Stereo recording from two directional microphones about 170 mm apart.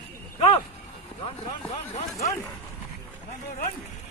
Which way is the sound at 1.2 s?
35° left (ahead or behind).